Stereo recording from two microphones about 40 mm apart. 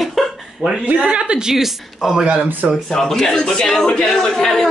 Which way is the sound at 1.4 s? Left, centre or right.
Centre.